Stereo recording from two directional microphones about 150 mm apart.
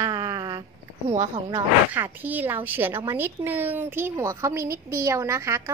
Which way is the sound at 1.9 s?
10° right (ahead or behind).